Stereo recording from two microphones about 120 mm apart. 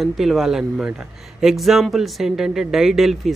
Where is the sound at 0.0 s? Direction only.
Centre (ahead or behind).